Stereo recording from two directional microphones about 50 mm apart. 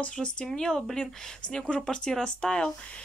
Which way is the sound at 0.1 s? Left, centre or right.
Left.